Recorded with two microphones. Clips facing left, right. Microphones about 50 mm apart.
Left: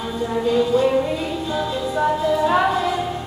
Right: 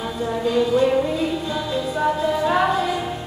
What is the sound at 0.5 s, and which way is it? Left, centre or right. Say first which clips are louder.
Music: even; centre.